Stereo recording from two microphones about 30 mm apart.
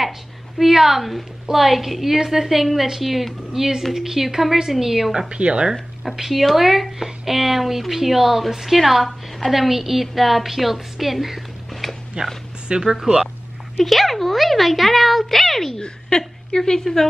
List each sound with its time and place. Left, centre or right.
0.6 s a woman's voice: centre
5.3 s speech: right
6.1 s a woman's voice: centre
11.8 s a sound: centre
12.6 s speech: right
13.8 s a child's voice: centre
15.7 s speech: left